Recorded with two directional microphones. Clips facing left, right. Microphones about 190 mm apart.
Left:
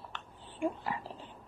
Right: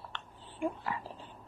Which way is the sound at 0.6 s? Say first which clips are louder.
Left 1 dB; 20° left (ahead or behind).